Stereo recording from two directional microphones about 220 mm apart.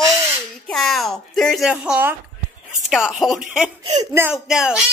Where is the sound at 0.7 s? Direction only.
Centre (ahead or behind).